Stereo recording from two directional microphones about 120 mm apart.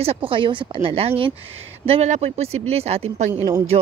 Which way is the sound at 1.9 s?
70° right (ahead or behind).